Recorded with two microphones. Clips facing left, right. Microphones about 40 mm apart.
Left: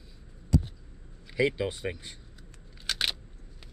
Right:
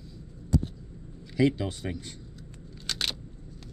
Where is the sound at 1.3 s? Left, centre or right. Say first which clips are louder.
Right 2 dB; centre.